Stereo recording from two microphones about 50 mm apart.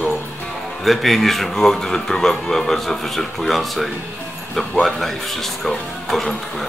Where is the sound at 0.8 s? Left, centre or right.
Centre.